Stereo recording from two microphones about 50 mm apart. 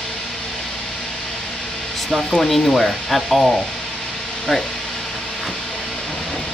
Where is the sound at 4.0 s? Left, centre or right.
Centre.